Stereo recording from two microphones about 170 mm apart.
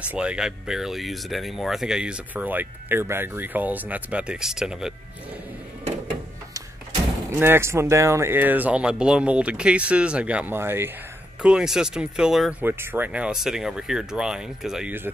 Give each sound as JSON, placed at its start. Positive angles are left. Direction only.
{"t": 0.1, "sound": "speech", "side_deg": -5}
{"t": 7.2, "sound": "speech", "side_deg": -15}